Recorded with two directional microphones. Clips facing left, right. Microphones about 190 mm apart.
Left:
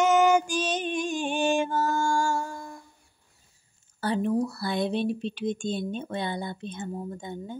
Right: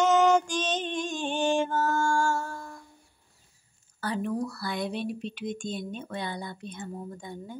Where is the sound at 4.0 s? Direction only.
25° left (ahead or behind).